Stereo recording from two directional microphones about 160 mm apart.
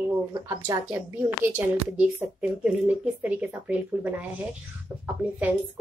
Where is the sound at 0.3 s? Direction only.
20° right (ahead or behind).